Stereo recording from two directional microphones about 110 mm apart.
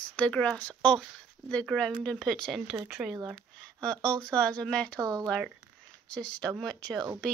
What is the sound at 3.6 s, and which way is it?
Speech, 10° left (ahead or behind).